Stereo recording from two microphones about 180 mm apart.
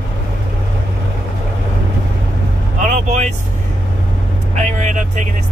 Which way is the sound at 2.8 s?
40° right (ahead or behind).